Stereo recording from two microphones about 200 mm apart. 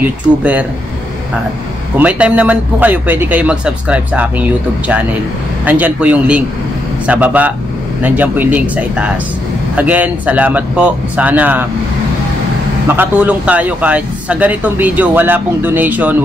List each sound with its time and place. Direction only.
0.0 s a man's voice: 5° right (ahead or behind)
2.0 s a man's voice: 5° right (ahead or behind)
12.8 s a man's voice: 10° right (ahead or behind)